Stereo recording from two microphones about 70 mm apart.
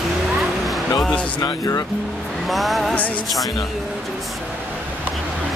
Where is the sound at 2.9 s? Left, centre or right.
Left.